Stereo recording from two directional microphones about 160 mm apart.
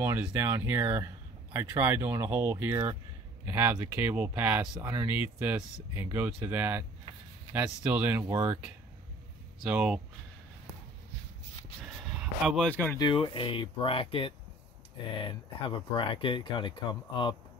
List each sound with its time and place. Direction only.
0.0 s speech: 15° right (ahead or behind)
11.8 s a sound: centre (ahead or behind)
12.6 s speech: 10° left (ahead or behind)
12.9 s speech: 30° left (ahead or behind)